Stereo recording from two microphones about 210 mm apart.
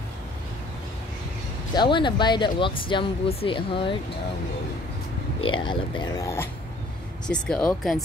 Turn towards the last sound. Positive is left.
turn(degrees=0)  # may be behind; listen again after turning